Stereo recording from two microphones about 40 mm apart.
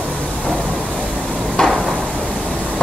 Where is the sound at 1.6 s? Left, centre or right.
Left.